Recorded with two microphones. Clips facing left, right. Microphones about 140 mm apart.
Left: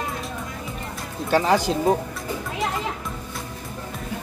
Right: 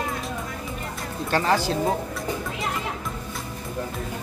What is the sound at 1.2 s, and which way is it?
Speech, 10° left (ahead or behind).